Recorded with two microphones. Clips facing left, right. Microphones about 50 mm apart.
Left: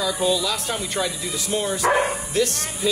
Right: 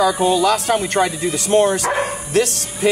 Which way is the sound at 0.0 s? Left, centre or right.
Right.